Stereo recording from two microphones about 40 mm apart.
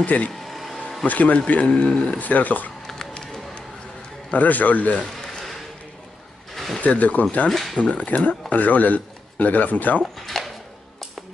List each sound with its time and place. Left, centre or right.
0.0 s speech: left
0.4 s a sound: centre
1.0 s speech: left
1.7 s speech: left
2.1 s speech: left
2.9 s bird: centre
4.3 s speech: left
6.5 s a sound: centre
6.8 s speech: left
7.4 s speech: centre
7.9 s speech: left
10.1 s drawer open or close: centre